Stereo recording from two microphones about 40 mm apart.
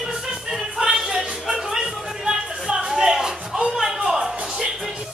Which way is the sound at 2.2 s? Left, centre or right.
Right.